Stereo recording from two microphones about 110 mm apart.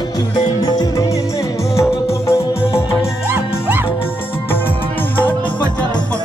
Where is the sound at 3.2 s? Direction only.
20° right (ahead or behind).